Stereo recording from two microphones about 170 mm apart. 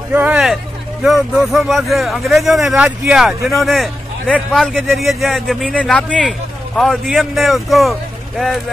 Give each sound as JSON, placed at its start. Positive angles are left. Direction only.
{"t": 0.1, "sound": "speech", "side_deg": -10}